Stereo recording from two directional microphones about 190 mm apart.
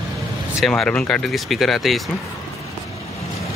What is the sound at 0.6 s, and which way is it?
Speech, 5° left (ahead or behind).